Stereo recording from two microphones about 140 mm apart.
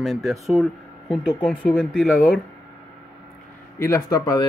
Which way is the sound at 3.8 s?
25° left (ahead or behind).